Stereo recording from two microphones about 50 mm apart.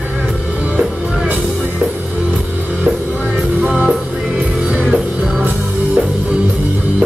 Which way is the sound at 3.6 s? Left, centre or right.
Centre.